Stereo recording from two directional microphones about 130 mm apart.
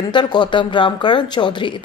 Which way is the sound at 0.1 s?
35° left (ahead or behind).